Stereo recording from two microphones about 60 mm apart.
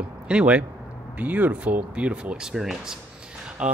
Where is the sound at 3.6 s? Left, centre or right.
Centre.